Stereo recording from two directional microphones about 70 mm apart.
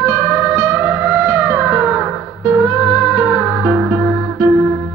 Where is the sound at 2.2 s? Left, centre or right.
Left.